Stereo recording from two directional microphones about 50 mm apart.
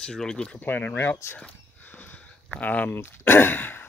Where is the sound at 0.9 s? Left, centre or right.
Left.